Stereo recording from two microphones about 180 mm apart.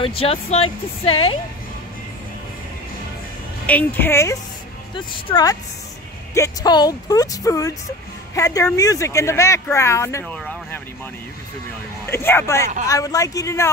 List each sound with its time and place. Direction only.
0.0 s speech: 30° left (ahead or behind)
3.6 s speech: 10° left (ahead or behind)
12.1 s speech: 15° left (ahead or behind)